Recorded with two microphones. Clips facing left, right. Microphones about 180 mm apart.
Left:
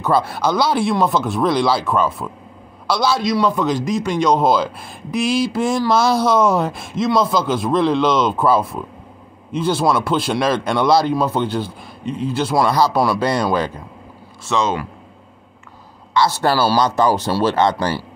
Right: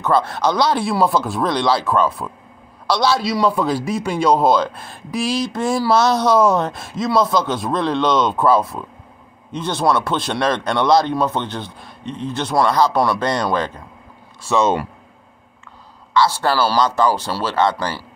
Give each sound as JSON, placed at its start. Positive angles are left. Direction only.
{"t": 0.0, "sound": "a man's voice", "side_deg": 10}
{"t": 0.8, "sound": "a man's voice", "side_deg": -5}
{"t": 5.9, "sound": "a man's voice", "side_deg": 5}
{"t": 16.1, "sound": "a man's voice", "side_deg": 20}